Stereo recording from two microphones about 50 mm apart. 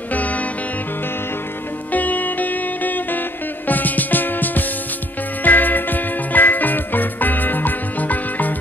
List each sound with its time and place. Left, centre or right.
0.1 s music: left
1.9 s music: left